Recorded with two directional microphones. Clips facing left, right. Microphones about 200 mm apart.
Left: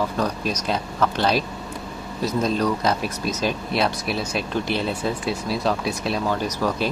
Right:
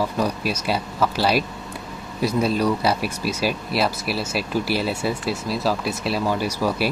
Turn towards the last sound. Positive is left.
turn(degrees=-10)  # may be behind; listen again after turning